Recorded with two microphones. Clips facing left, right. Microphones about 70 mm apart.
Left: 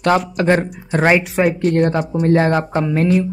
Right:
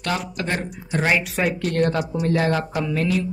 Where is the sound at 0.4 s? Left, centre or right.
Left.